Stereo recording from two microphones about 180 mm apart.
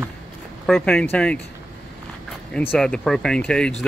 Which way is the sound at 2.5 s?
10° left (ahead or behind).